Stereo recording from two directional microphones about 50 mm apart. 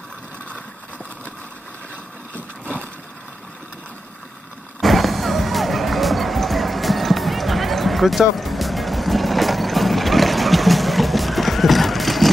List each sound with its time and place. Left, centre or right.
4.7 s music: centre